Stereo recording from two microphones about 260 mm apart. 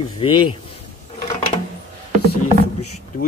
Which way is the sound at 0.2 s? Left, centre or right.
Centre.